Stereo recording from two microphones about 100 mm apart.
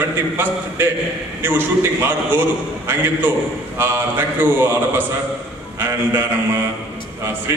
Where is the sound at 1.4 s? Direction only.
20° right (ahead or behind).